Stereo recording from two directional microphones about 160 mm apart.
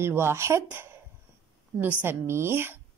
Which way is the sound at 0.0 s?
15° right (ahead or behind).